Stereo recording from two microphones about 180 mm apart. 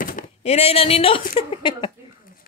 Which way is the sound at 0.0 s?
40° left (ahead or behind).